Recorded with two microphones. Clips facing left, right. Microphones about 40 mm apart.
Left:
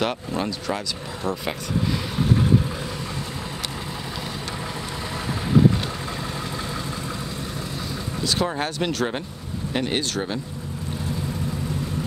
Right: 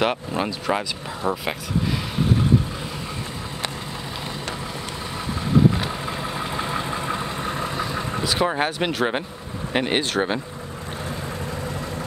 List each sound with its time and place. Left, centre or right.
0.0 s speech: centre
6.5 s vehicle: right
8.2 s speech: centre